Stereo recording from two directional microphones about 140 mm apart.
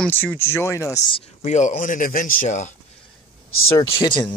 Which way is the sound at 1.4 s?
60° left (ahead or behind).